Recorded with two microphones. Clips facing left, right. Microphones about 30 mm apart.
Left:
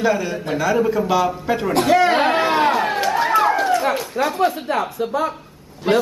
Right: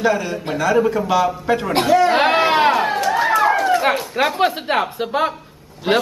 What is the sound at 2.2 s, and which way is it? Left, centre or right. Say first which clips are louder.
Chatter: right 2 dB; right.